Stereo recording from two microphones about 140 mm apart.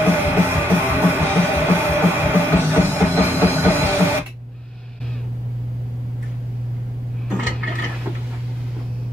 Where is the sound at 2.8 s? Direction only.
15° left (ahead or behind).